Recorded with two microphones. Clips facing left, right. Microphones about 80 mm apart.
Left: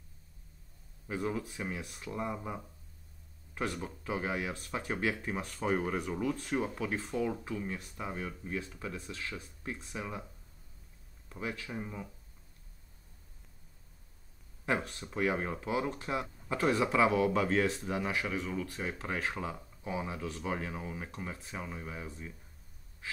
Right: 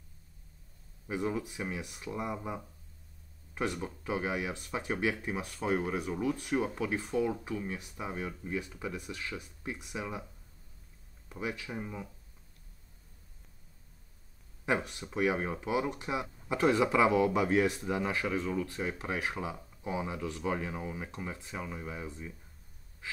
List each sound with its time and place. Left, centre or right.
1.0 s speech: centre
11.2 s speech: centre
14.7 s speech: centre; by 18.5 s right
18.8 s speech: centre